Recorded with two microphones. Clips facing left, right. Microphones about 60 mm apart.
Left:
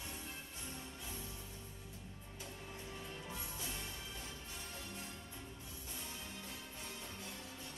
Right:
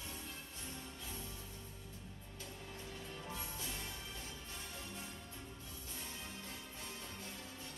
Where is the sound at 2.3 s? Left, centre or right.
Centre.